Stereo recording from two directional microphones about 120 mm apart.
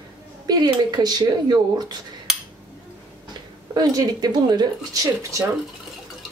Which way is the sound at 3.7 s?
30° right (ahead or behind).